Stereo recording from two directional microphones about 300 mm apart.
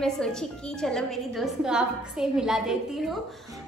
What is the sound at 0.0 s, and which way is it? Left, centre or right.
A woman's voice, centre.